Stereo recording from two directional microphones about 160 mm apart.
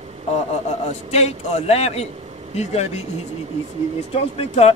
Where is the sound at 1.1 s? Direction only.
40° left (ahead or behind).